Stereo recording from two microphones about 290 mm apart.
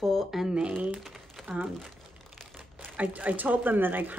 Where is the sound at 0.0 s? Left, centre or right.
Centre.